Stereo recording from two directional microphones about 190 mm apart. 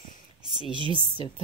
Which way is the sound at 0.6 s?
25° right (ahead or behind).